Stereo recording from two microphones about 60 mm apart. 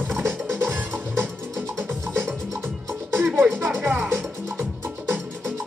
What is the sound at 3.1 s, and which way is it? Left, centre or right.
Music, right.